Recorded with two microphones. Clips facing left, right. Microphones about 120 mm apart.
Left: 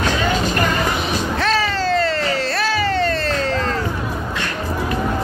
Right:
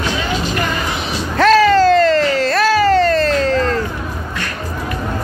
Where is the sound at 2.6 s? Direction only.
40° right (ahead or behind).